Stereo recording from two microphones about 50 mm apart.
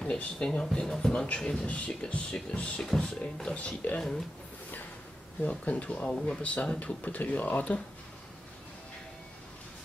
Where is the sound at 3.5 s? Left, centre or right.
Left.